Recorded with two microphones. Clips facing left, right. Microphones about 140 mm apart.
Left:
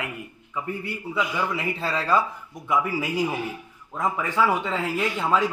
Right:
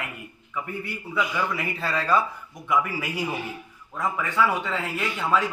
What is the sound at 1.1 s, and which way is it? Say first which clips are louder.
A man's voice: even; 25° left (ahead or behind).